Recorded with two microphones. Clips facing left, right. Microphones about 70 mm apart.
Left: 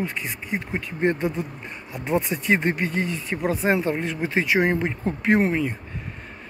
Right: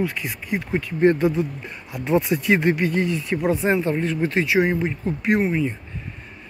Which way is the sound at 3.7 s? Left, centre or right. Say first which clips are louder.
Right 2 dB; left.